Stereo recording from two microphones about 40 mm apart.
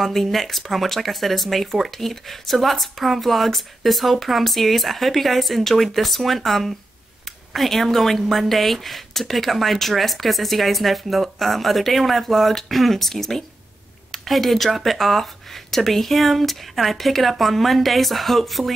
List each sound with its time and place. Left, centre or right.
0.0 s speech: centre